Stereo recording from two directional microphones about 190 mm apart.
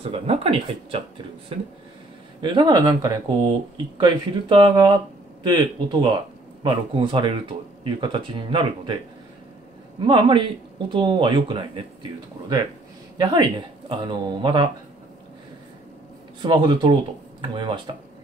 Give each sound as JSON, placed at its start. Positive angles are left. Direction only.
{"t": 0.0, "sound": "speech", "side_deg": -30}
{"t": 2.4, "sound": "speech", "side_deg": -25}
{"t": 10.0, "sound": "speech", "side_deg": -25}
{"t": 16.3, "sound": "speech", "side_deg": -25}